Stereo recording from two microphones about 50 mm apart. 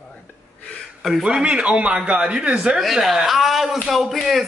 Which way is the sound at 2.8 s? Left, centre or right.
Centre.